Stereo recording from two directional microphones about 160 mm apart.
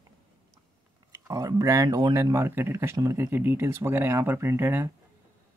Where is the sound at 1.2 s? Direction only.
20° right (ahead or behind).